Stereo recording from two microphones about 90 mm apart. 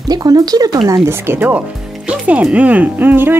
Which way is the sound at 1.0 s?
25° right (ahead or behind).